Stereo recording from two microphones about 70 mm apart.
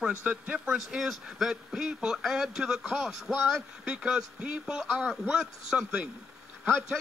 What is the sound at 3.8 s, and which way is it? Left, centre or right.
Speech, centre.